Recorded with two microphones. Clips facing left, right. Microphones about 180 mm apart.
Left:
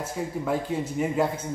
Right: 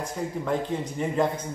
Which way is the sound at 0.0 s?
5° left (ahead or behind).